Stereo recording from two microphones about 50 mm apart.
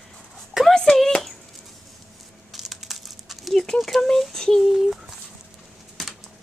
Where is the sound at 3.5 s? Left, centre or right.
Centre.